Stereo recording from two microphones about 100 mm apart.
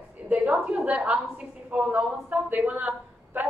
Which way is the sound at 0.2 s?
15° right (ahead or behind).